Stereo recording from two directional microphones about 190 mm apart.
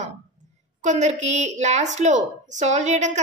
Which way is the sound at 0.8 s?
40° right (ahead or behind).